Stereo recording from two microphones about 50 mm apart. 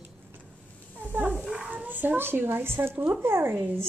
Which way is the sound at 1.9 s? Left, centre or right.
Right.